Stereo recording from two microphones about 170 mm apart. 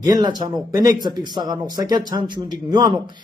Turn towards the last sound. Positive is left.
turn(degrees=-25)  # may be behind; listen again after turning